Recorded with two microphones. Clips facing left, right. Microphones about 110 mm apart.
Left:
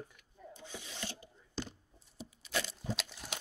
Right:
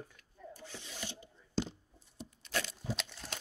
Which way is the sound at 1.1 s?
20° right (ahead or behind).